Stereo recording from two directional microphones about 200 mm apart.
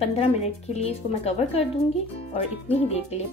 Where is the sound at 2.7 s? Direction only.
30° left (ahead or behind).